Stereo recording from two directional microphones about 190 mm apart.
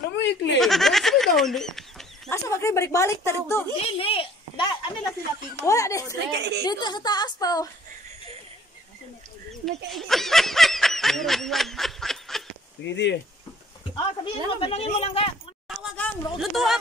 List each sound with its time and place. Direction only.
0.6 s a sound: centre (ahead or behind)
2.3 s a woman's voice: 15° left (ahead or behind)
3.8 s a woman's voice: 30° left (ahead or behind)
6.3 s a woman's voice: 60° right (ahead or behind)
6.6 s speech: 20° left (ahead or behind)
9.5 s speech: centre (ahead or behind)
12.8 s speech: 70° left (ahead or behind)
13.9 s speech: 25° left (ahead or behind)
15.7 s speech: centre (ahead or behind)